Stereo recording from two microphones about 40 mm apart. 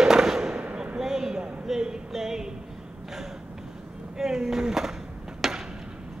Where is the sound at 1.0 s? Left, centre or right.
Centre.